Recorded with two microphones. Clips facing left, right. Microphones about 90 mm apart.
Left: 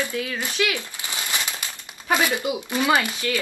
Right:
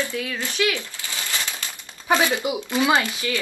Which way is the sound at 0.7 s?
20° left (ahead or behind).